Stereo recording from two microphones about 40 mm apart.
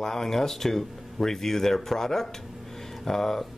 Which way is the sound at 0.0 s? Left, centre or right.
Centre.